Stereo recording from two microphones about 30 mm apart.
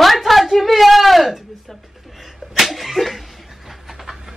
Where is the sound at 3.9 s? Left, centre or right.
Centre.